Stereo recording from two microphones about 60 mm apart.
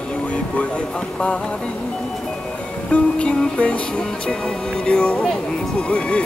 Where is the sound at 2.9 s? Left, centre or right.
Centre.